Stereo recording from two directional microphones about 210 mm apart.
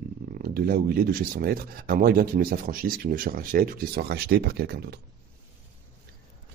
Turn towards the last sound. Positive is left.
turn(degrees=-50)  # may be behind; listen again after turning